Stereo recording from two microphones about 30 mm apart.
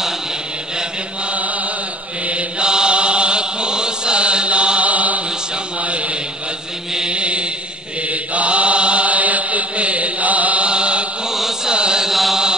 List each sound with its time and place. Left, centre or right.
2.6 s chant: right
4.8 s chant: right
7.1 s mantra: right
8.1 s mantra: right
10.7 s chant: right
12.1 s chant: centre